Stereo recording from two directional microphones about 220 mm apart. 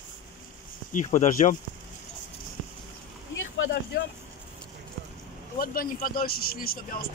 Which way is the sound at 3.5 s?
60° left (ahead or behind).